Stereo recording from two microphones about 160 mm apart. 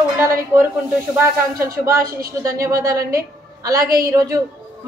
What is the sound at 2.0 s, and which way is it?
Speech, 65° right (ahead or behind).